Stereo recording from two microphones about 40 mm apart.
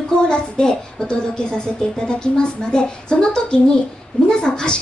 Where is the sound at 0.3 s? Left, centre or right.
Left.